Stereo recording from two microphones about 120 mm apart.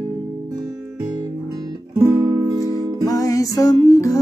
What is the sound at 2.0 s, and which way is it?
Music, 25° right (ahead or behind).